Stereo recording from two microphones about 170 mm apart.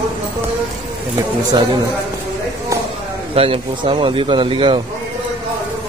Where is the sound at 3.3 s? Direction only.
35° right (ahead or behind).